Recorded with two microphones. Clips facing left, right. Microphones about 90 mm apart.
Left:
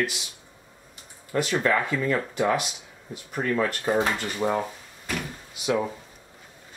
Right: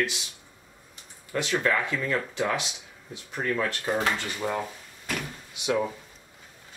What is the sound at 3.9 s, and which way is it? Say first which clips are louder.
Speech: left 3 dB; 20° left (ahead or behind).